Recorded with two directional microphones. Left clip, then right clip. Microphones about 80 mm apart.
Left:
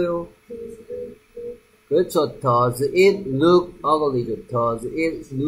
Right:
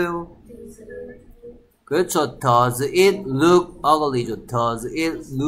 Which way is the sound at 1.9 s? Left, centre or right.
Centre.